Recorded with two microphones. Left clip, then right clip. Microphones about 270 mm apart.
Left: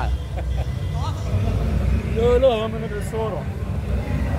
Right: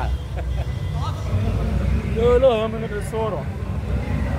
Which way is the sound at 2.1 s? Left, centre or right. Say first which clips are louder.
Right 1 dB; centre.